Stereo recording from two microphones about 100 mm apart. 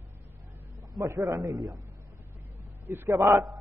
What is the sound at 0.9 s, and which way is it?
Speech, 35° right (ahead or behind).